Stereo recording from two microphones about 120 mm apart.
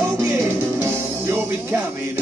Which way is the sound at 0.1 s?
25° right (ahead or behind).